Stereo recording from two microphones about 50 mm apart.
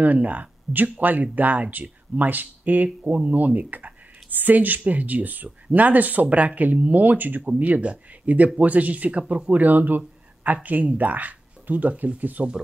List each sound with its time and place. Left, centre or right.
0.0 s speech: right